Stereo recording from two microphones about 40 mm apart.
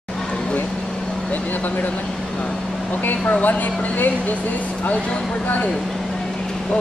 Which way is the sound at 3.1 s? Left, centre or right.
Left.